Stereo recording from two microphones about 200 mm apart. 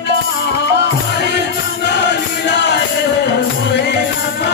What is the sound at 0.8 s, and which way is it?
Music, 60° left (ahead or behind).